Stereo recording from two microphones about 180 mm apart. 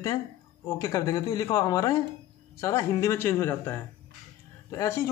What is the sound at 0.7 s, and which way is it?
Speech, 15° left (ahead or behind).